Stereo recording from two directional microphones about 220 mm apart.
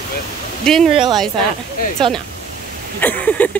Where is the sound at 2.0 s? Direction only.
20° right (ahead or behind).